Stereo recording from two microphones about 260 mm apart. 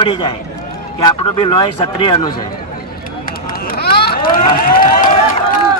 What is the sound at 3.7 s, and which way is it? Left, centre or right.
Vehicle, left.